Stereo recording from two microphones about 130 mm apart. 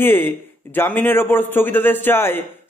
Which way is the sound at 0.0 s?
15° left (ahead or behind).